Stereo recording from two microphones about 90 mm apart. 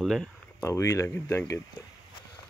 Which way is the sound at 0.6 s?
35° left (ahead or behind).